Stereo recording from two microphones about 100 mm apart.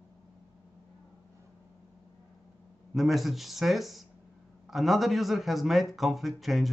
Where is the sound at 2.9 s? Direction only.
Centre (ahead or behind).